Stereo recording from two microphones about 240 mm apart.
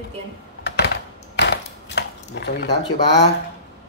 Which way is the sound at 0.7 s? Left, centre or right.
Left.